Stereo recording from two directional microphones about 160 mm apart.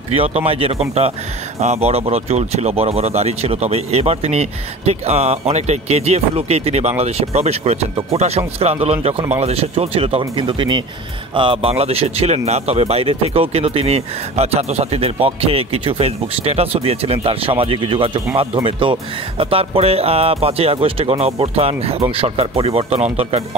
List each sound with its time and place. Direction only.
0.1 s speech: 35° right (ahead or behind)